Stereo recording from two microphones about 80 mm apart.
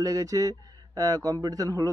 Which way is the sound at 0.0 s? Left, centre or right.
Right.